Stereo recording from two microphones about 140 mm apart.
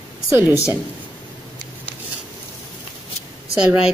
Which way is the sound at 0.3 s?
15° right (ahead or behind).